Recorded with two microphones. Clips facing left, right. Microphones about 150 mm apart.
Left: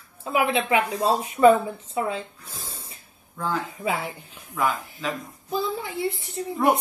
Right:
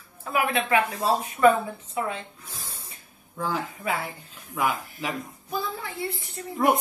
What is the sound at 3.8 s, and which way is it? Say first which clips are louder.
Speech: left 3 dB; 20° left (ahead or behind).